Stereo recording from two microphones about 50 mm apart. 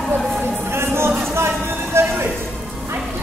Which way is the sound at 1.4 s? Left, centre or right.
Right.